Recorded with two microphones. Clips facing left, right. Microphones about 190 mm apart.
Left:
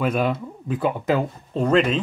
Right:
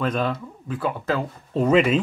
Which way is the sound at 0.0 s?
10° left (ahead or behind).